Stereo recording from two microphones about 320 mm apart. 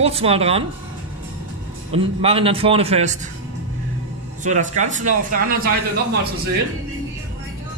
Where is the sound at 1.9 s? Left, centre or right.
Centre.